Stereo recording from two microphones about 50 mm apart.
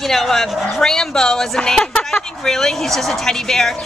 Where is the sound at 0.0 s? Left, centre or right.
Centre.